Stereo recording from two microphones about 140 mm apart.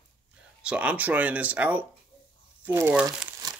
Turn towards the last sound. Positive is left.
turn(degrees=-10)  # may be behind; listen again after turning